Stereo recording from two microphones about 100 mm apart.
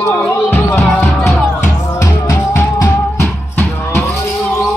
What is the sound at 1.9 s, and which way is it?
Music, 30° left (ahead or behind).